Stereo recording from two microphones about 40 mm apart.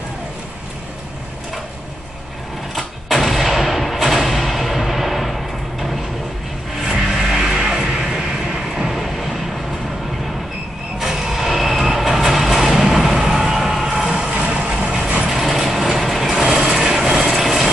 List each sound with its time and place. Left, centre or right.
2.7 s a sound: centre
7.0 s music: centre
7.8 s vehicle: centre
11.0 s vehicle: centre
13.4 s train: centre
13.8 s music: centre; by 14.7 s right
14.7 s vehicle: centre
15.3 s mechanisms: centre
16.9 s vehicle: centre